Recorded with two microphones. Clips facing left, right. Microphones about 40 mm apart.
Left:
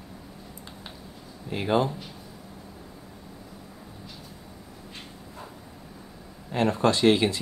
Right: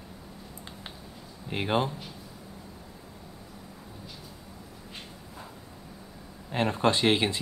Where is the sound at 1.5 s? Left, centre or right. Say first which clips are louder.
Left 3 dB; right.